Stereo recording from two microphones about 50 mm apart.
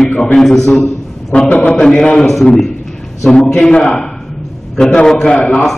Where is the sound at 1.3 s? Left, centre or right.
Left.